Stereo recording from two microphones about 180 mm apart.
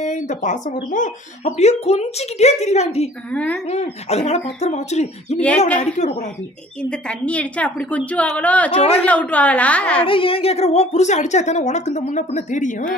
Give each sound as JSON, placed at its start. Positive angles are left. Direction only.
{"t": 0.0, "sound": "a woman's voice", "side_deg": 45}
{"t": 3.3, "sound": "a woman's voice", "side_deg": 5}
{"t": 3.6, "sound": "a woman's voice", "side_deg": 35}
{"t": 6.8, "sound": "a woman's voice", "side_deg": 5}
{"t": 10.0, "sound": "a woman's voice", "side_deg": 30}